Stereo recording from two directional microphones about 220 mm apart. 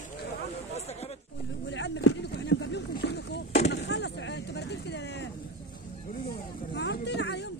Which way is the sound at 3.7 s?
50° left (ahead or behind).